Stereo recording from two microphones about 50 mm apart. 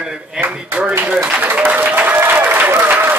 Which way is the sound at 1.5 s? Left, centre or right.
Right.